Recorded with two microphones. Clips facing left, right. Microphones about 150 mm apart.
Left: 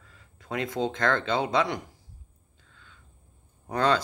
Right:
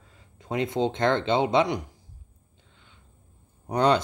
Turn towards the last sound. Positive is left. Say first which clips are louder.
# right 3 dB
turn(degrees=-15)  # may be behind; listen again after turning